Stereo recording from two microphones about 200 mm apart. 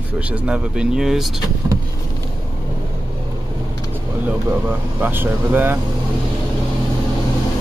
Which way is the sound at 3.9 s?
10° right (ahead or behind).